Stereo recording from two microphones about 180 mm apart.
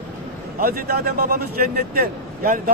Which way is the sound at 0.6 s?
60° right (ahead or behind).